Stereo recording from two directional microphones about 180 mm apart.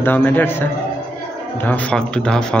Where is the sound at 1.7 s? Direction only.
5° left (ahead or behind).